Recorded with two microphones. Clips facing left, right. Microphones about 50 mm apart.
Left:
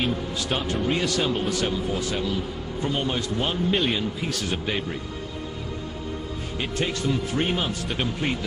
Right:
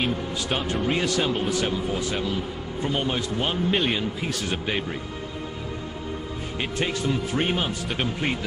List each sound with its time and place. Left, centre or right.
0.0 s a man's voice: centre
0.9 s a man's voice: centre
6.6 s a man's voice: centre